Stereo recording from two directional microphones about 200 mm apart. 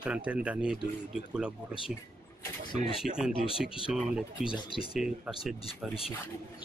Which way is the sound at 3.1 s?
5° right (ahead or behind).